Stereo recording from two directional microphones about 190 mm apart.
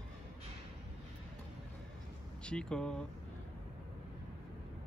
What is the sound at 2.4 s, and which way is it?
Speech, 5° left (ahead or behind).